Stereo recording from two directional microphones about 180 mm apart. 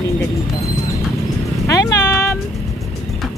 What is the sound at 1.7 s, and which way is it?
Music, 15° left (ahead or behind).